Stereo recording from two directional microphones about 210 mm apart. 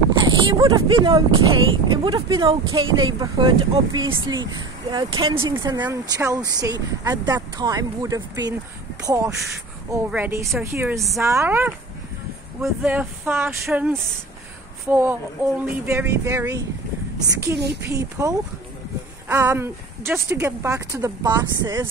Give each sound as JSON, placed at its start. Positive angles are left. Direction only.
{"t": 0.2, "sound": "a woman's voice", "side_deg": -20}
{"t": 17.8, "sound": "a woman's voice", "side_deg": -15}